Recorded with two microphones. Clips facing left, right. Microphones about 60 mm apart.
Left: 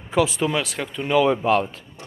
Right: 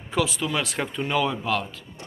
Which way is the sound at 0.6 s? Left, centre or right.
Centre.